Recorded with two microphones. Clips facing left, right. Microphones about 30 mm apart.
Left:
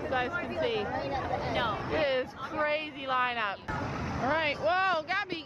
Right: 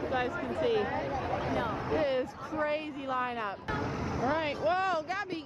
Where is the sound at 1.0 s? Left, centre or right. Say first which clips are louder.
Left 1 dB; left.